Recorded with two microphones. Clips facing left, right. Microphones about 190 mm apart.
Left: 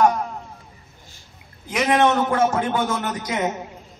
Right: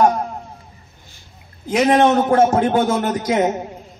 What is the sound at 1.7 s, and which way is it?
A man's voice, 35° right (ahead or behind).